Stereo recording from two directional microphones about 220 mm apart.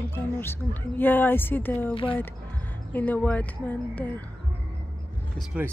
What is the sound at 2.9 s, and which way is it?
Speech, 5° left (ahead or behind).